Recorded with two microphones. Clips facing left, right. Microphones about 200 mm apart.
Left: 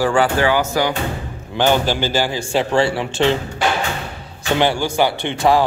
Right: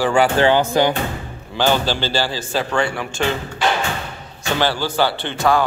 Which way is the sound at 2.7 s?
25° left (ahead or behind).